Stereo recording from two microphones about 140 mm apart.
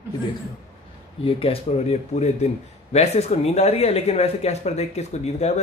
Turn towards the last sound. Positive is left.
turn(degrees=50)  # may be behind; listen again after turning